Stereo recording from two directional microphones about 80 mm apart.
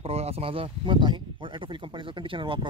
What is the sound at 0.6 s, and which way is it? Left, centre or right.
Speech, right.